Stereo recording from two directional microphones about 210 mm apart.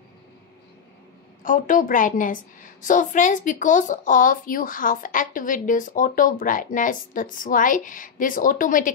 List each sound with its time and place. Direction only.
1.4 s a woman's voice: 40° left (ahead or behind)